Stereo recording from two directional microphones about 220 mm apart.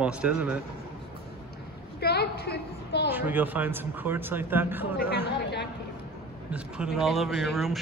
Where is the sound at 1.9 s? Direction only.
45° left (ahead or behind).